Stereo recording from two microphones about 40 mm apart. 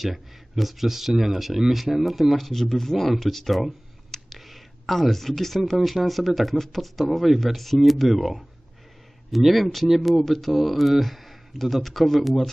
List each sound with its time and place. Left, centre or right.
0.0 s speech: centre